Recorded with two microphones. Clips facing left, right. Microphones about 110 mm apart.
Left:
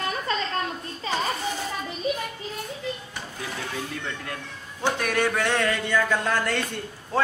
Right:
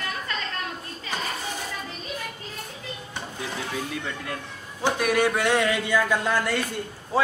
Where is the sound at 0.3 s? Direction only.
25° left (ahead or behind).